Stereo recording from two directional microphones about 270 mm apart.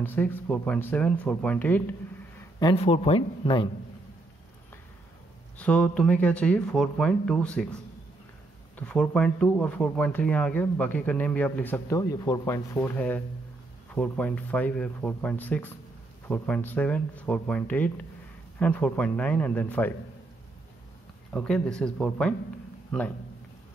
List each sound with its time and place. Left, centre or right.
0.0 s speech: centre
2.6 s speech: left
5.6 s speech: centre
21.3 s a man's voice: centre